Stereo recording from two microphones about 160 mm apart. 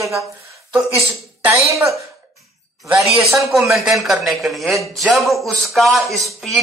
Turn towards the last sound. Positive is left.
turn(degrees=0)  # may be behind; listen again after turning